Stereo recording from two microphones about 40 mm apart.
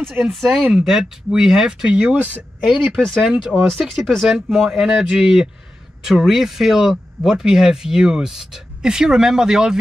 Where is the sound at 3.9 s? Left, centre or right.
Centre.